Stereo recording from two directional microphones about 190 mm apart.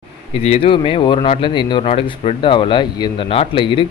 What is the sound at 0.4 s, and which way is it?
Speech, 30° left (ahead or behind).